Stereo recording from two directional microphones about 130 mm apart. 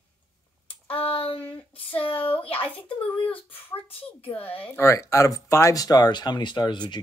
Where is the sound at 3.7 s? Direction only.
45° left (ahead or behind).